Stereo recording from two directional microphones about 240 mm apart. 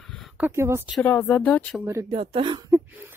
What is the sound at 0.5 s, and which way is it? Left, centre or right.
Speech, centre.